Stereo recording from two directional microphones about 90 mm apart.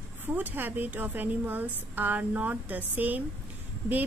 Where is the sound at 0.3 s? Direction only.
20° right (ahead or behind).